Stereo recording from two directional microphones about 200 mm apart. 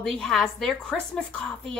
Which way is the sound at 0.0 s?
Centre (ahead or behind).